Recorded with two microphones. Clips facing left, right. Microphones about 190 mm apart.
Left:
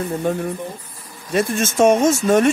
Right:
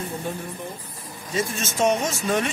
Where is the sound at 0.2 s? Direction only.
60° left (ahead or behind).